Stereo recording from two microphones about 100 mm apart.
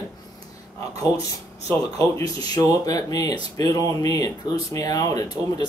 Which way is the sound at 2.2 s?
35° left (ahead or behind).